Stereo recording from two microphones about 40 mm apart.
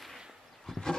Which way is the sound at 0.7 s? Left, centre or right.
Centre.